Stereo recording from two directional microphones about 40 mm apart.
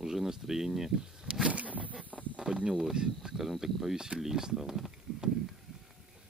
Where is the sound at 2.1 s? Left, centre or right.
Right.